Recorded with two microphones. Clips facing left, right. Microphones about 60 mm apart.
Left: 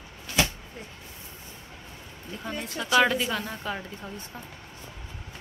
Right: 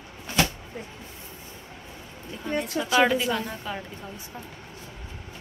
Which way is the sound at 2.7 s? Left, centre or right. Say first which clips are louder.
Even; centre.